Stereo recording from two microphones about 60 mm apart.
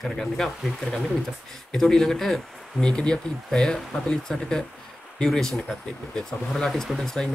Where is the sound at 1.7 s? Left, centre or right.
Centre.